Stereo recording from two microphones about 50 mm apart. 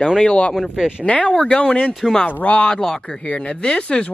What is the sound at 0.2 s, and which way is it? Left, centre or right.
Speech, centre.